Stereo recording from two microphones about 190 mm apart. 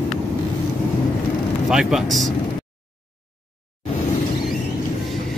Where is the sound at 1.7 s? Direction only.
5° right (ahead or behind).